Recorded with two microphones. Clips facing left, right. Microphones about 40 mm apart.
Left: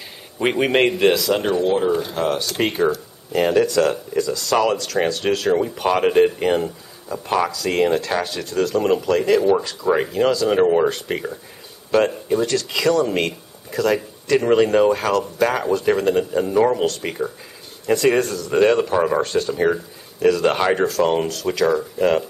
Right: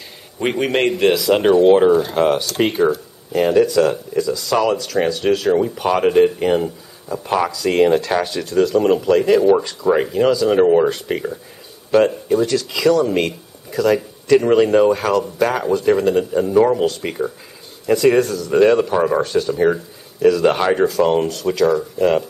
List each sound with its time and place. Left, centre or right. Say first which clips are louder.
0.4 s a man's voice: left 1 dB; centre
1.6 s speech: right 8 dB; right
2.4 s speech: right 3 dB; centre